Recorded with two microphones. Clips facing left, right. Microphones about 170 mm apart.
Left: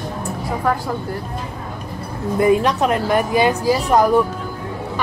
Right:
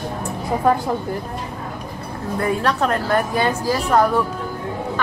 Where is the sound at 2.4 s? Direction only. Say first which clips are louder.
Left 5 dB; 15° left (ahead or behind).